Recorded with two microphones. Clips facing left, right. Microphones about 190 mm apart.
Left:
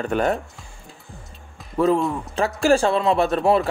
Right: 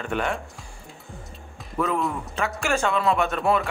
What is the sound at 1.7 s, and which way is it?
A man's voice, 30° left (ahead or behind).